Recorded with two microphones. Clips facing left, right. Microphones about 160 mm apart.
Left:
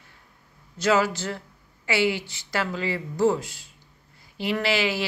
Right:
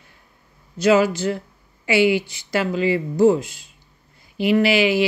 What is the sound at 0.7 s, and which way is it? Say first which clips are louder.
Speech: right 6 dB; 15° right (ahead or behind).